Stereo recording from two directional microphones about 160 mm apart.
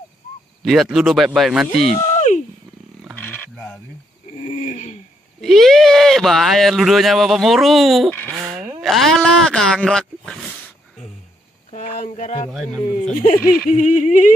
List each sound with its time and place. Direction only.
0.6 s speech: centre (ahead or behind)
2.0 s a sound: 50° left (ahead or behind)
3.5 s cricket: 5° left (ahead or behind)
4.5 s speech: 50° left (ahead or behind)
5.4 s speech: centre (ahead or behind)
11.7 s a sound: 50° left (ahead or behind)
12.4 s speech: centre (ahead or behind)
13.2 s speech: 55° left (ahead or behind)